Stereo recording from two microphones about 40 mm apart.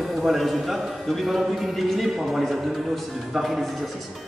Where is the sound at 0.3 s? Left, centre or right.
Centre.